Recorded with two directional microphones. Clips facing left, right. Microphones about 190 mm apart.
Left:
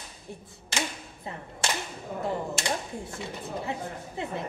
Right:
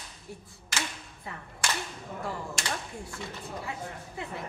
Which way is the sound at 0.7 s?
25° left (ahead or behind).